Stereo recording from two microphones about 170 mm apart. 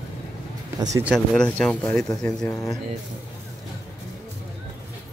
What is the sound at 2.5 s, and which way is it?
Speech, 20° left (ahead or behind).